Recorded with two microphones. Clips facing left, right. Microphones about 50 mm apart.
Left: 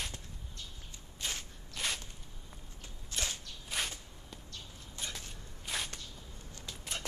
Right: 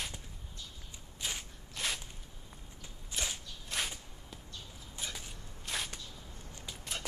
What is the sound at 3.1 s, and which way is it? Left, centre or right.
Whip, centre.